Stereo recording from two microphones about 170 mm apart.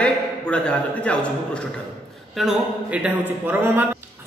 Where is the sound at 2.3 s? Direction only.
5° right (ahead or behind).